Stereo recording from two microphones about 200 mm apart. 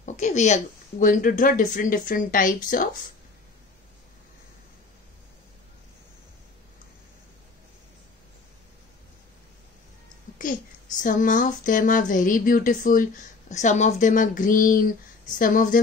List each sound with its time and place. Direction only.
0.0 s speech: 35° left (ahead or behind)
10.4 s speech: 40° left (ahead or behind)